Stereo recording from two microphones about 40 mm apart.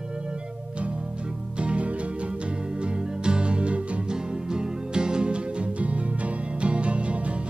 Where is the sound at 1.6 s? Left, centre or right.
Right.